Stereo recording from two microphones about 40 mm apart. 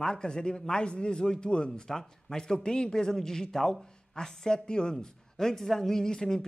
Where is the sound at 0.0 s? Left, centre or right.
Centre.